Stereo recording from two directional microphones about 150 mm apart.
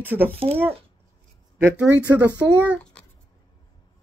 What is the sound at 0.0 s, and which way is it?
Speech, 15° right (ahead or behind).